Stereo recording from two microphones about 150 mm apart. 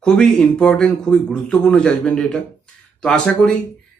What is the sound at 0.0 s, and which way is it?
Speech, 5° left (ahead or behind).